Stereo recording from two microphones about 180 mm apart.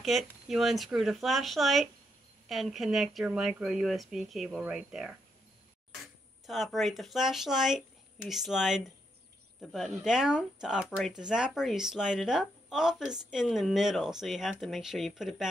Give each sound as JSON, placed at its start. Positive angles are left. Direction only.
{"t": 0.0, "sound": "speech", "side_deg": 0}
{"t": 6.4, "sound": "speech", "side_deg": 0}